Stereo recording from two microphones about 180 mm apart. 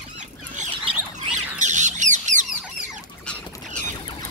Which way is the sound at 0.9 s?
30° right (ahead or behind).